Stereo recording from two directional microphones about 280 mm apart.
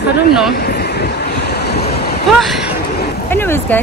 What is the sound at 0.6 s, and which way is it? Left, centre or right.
Vehicle, left.